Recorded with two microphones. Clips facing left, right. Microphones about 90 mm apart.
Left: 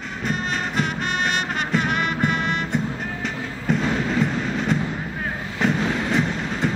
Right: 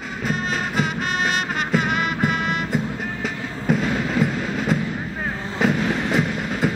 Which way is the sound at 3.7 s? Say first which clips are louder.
Right 1 dB; 5° right (ahead or behind).